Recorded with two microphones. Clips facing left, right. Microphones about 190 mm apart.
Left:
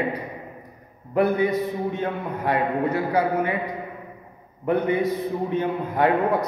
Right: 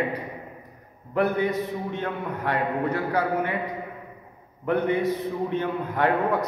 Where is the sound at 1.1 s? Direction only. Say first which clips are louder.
Left 3 dB; 10° left (ahead or behind).